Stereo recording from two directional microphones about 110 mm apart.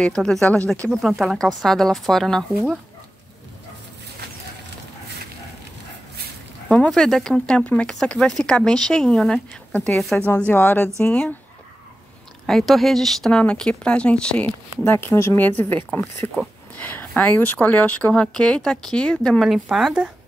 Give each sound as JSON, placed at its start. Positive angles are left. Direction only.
{"t": 0.0, "sound": "speech", "side_deg": 5}
{"t": 6.9, "sound": "speech", "side_deg": 0}
{"t": 12.4, "sound": "speech", "side_deg": 0}